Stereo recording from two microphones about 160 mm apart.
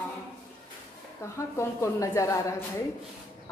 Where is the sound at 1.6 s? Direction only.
20° left (ahead or behind).